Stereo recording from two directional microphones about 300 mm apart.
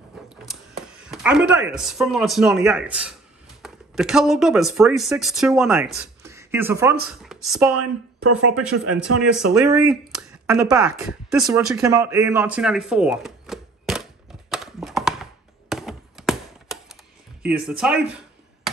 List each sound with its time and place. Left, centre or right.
1.0 s speech: centre
6.2 s a sound: centre
7.1 s speech: centre
7.7 s a woman's voice: right
9.5 s speech: centre
14.5 s clip-clop: centre
15.7 s a sound: centre
17.6 s speech: centre